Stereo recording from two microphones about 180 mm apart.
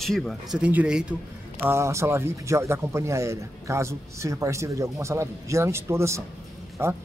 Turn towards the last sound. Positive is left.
turn(degrees=-15)  # may be behind; listen again after turning